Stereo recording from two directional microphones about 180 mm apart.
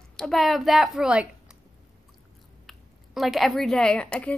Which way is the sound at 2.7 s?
Centre (ahead or behind).